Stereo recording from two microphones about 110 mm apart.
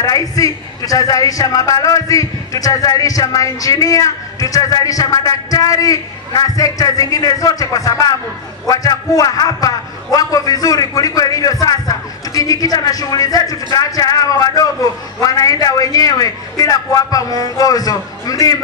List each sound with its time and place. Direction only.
0.0 s a man's voice: 35° left (ahead or behind)